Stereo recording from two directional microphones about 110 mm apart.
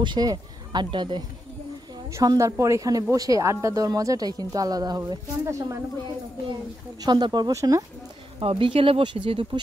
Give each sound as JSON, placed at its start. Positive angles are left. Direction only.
{"t": 0.0, "sound": "speech", "side_deg": -40}
{"t": 2.1, "sound": "speech", "side_deg": -30}
{"t": 7.0, "sound": "speech", "side_deg": -40}
{"t": 7.5, "sound": "speech", "side_deg": -30}
{"t": 8.4, "sound": "speech", "side_deg": -55}